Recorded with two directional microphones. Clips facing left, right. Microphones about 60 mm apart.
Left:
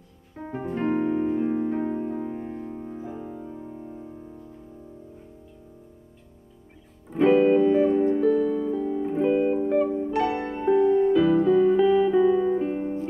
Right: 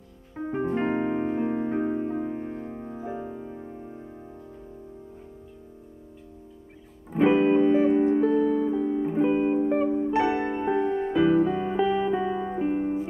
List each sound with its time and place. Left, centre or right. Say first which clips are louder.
0.5 s music: even; centre
7.1 s music: left 2 dB; centre
10.1 s music: right 1 dB; right